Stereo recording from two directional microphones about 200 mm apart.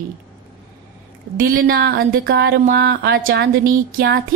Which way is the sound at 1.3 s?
45° right (ahead or behind).